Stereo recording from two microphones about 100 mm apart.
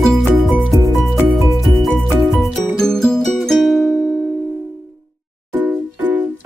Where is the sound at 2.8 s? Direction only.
5° left (ahead or behind).